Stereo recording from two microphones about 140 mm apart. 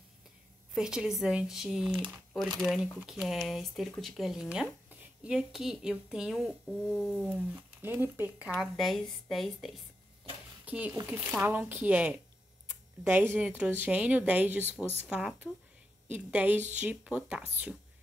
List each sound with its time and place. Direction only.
0.7 s speech: 5° right (ahead or behind)
2.0 s speech: 35° right (ahead or behind)
2.6 s speech: 5° right (ahead or behind)
6.9 s a sound: 10° left (ahead or behind)
7.2 s speech: 10° right (ahead or behind)
8.5 s speech: centre (ahead or behind)
10.6 s speech: 10° right (ahead or behind)
13.6 s speech: 10° right (ahead or behind)